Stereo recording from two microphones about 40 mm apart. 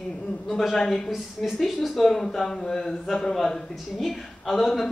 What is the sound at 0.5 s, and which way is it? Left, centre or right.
Speech, centre.